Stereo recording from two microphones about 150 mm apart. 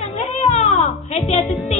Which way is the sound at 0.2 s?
50° left (ahead or behind).